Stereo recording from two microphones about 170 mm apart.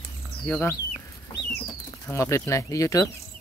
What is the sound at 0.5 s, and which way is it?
Speech, 10° left (ahead or behind).